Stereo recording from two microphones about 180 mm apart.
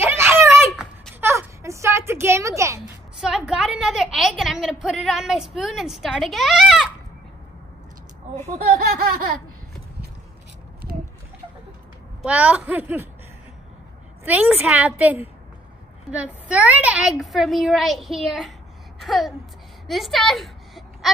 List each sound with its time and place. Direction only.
0.0 s a sound: 10° right (ahead or behind)
3.2 s a woman's voice: 5° right (ahead or behind)
12.2 s a woman's voice: 5° right (ahead or behind)
14.2 s a woman's voice: 10° right (ahead or behind)
16.4 s a woman's voice: 5° right (ahead or behind)
19.9 s a sound: centre (ahead or behind)